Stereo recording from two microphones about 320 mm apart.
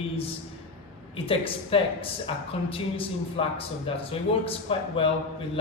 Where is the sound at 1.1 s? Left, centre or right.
Centre.